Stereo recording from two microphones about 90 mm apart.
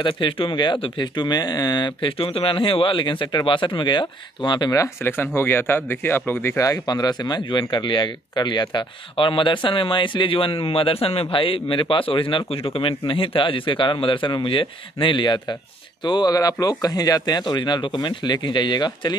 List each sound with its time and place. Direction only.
0.0 s speech: 65° left (ahead or behind)
4.7 s speech: 25° left (ahead or behind)
6.6 s speech: 45° left (ahead or behind)